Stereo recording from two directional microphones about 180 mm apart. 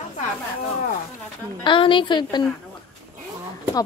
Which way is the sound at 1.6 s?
25° left (ahead or behind).